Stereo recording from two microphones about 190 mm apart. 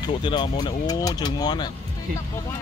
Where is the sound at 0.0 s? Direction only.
25° left (ahead or behind).